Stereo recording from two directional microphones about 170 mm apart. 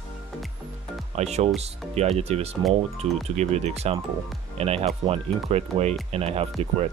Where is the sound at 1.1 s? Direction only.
40° right (ahead or behind).